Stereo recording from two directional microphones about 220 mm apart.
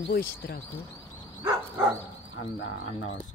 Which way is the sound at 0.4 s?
50° left (ahead or behind).